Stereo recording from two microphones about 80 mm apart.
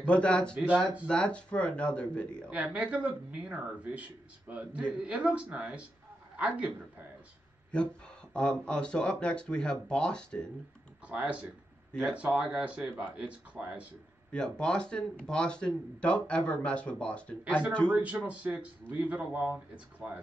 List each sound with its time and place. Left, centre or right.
0.0 s speech: centre
2.5 s speech: centre
7.7 s speech: centre
11.1 s speech: centre
12.9 s speech: right
14.3 s speech: centre
17.9 s speech: centre